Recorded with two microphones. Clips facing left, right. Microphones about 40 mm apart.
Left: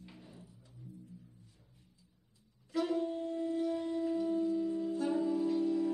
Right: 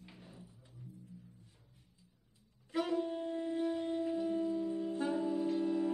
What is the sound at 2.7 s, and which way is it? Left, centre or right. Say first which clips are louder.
Wind instrument: left 1 dB; right.